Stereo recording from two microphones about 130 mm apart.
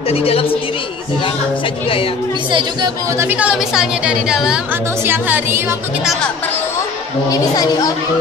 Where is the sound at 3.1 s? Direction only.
20° right (ahead or behind).